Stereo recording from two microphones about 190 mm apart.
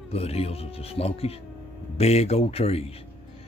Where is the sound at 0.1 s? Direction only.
30° left (ahead or behind).